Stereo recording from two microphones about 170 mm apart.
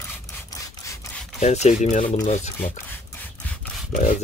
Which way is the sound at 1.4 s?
40° left (ahead or behind).